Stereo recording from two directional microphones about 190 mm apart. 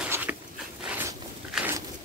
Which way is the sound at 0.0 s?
10° right (ahead or behind).